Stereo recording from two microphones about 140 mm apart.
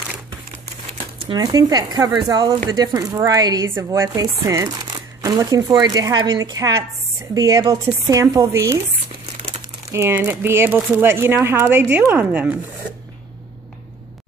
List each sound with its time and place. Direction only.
1.4 s speech: 25° right (ahead or behind)
9.8 s speech: 20° right (ahead or behind)